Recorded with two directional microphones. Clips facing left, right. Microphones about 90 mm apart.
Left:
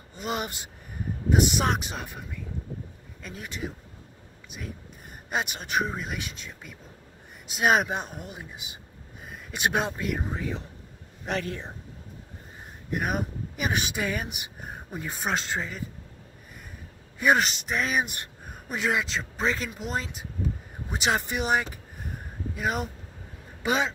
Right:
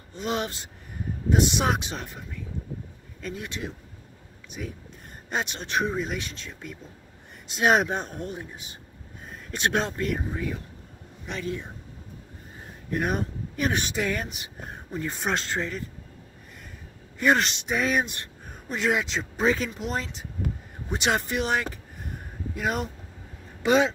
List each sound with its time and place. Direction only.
0.1 s speech: 5° left (ahead or behind)
10.3 s speech: 25° left (ahead or behind)
11.4 s speech: 40° left (ahead or behind)
12.9 s speech: 10° left (ahead or behind)
17.2 s speech: 5° left (ahead or behind)